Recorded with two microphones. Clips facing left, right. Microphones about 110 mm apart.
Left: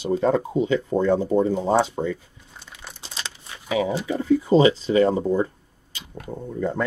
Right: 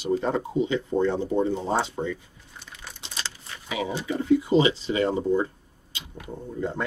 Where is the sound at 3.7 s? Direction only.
40° left (ahead or behind).